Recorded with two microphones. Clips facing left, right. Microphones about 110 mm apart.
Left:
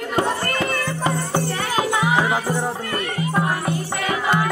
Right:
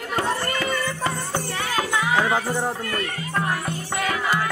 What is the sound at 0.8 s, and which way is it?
Music, 15° left (ahead or behind).